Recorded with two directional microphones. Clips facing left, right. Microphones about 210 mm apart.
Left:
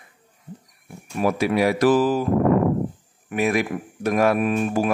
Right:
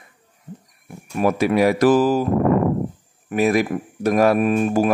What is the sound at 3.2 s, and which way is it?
Speech, 35° right (ahead or behind).